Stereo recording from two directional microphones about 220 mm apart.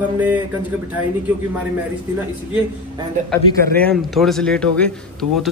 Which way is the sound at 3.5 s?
45° right (ahead or behind).